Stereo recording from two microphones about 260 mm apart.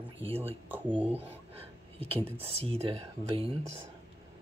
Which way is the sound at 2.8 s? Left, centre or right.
Right.